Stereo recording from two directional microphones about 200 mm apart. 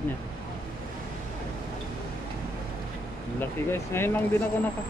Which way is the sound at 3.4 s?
10° left (ahead or behind).